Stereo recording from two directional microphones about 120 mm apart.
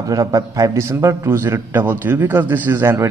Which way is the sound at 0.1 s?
30° right (ahead or behind).